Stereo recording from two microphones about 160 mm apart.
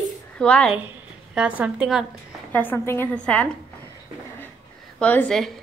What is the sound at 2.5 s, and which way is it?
A woman's voice, 10° left (ahead or behind).